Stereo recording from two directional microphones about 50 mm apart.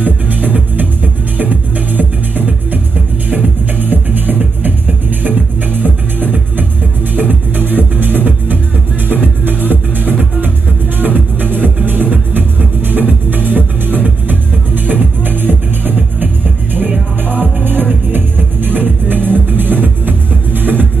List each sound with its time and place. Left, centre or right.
0.0 s music: right
17.3 s music: right